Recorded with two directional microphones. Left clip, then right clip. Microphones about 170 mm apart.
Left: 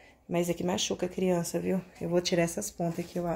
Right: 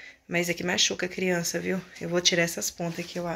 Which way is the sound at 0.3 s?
10° left (ahead or behind).